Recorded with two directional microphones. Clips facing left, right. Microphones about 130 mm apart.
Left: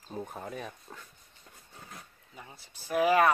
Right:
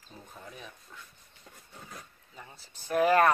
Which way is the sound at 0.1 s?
60° left (ahead or behind).